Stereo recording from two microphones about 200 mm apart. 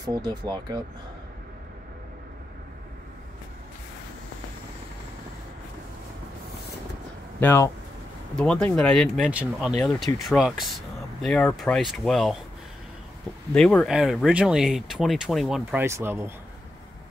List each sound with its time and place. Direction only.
0.0 s speech: 20° right (ahead or behind)
7.3 s speech: 10° left (ahead or behind)
13.5 s speech: 5° left (ahead or behind)
15.8 s speech: 10° right (ahead or behind)